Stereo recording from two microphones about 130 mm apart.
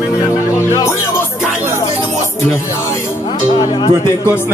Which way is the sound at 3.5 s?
35° left (ahead or behind).